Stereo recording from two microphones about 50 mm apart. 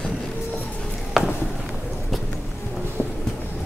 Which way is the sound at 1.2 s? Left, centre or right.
Centre.